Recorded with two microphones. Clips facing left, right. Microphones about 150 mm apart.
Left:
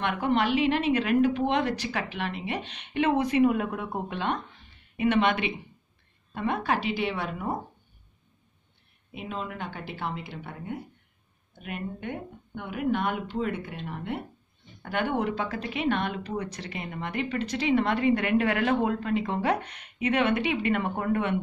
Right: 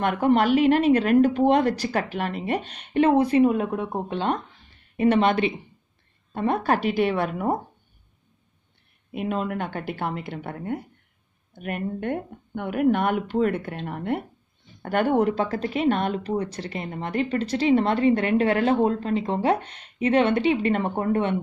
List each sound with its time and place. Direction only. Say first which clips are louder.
0.0 s a woman's voice: right 5 dB; 45° right (ahead or behind)
9.1 s a woman's voice: right 8 dB; 55° right (ahead or behind); by 21.4 s 30° right (ahead or behind)